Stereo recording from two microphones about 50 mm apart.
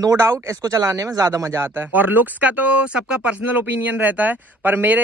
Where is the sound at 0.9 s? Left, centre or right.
Right.